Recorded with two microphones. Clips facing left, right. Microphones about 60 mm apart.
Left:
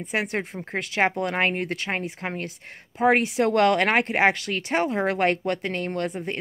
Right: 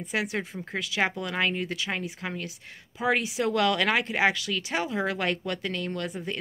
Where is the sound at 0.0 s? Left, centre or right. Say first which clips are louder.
Left 3 dB; left.